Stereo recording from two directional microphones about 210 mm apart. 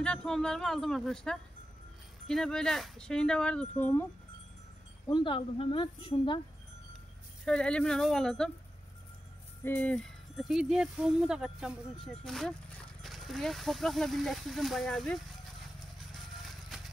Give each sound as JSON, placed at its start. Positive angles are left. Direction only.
{"t": 0.0, "sound": "speech", "side_deg": 5}
{"t": 5.0, "sound": "speech", "side_deg": 20}
{"t": 7.4, "sound": "speech", "side_deg": 5}
{"t": 9.7, "sound": "speech", "side_deg": 5}
{"t": 16.6, "sound": "music", "side_deg": 0}